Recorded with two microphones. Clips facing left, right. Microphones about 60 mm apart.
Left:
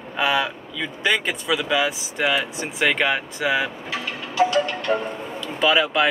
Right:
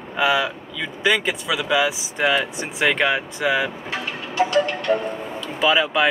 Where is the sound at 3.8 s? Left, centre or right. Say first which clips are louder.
Right 1 dB; right.